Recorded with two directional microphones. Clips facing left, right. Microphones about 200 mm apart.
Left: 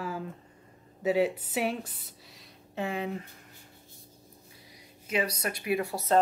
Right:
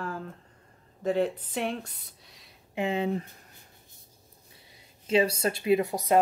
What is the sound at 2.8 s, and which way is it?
Speech, 25° right (ahead or behind).